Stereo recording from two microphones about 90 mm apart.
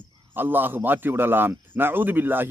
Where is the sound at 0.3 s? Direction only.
20° right (ahead or behind).